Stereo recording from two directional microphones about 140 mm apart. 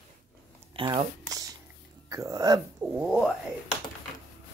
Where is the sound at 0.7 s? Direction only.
35° right (ahead or behind).